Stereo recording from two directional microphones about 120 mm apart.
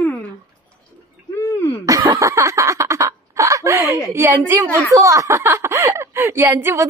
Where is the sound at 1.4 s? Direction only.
25° left (ahead or behind).